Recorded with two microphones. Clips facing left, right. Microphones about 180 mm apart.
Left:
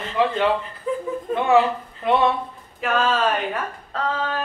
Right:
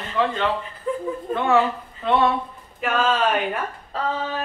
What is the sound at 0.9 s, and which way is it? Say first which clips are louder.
Chuckle: left 1 dB; centre (ahead or behind).